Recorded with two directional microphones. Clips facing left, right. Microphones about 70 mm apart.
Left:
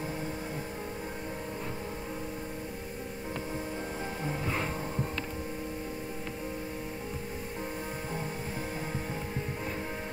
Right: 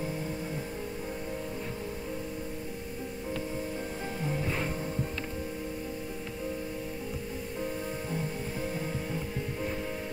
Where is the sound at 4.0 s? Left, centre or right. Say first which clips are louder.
Right 3 dB; centre.